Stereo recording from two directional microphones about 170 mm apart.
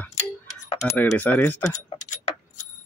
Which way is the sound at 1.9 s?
45° left (ahead or behind).